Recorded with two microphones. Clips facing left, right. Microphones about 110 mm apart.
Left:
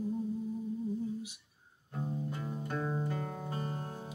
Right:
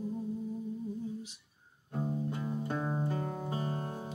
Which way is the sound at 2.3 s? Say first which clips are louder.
Right 3 dB; 20° right (ahead or behind).